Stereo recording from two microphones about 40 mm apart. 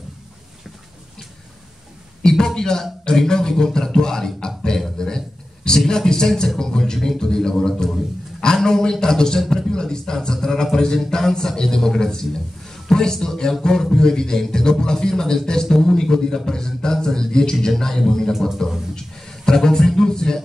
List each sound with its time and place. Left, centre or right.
2.2 s a man's voice: centre
4.9 s a sound: centre
5.9 s a man's voice: centre